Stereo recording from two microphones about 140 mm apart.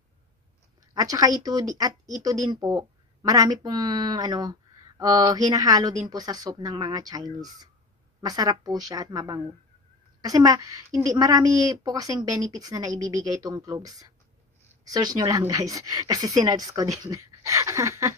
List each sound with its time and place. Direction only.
0.9 s a woman's voice: 25° right (ahead or behind)
14.7 s a sound: 25° right (ahead or behind)
15.1 s a woman's voice: 25° right (ahead or behind)